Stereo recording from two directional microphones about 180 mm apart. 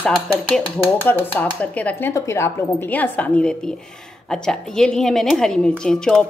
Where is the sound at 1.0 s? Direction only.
10° left (ahead or behind).